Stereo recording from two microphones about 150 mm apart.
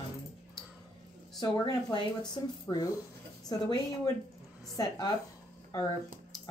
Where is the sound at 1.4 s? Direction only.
25° left (ahead or behind).